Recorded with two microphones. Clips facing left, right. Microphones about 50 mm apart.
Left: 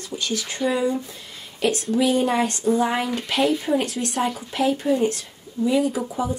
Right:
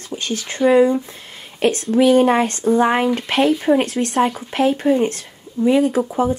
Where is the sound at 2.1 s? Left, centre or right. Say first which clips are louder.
Right 9 dB; right.